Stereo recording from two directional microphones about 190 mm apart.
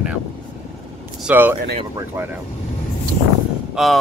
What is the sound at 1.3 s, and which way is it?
Speech, 10° right (ahead or behind).